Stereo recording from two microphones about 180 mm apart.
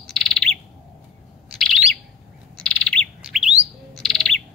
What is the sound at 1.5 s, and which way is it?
Bird, centre (ahead or behind).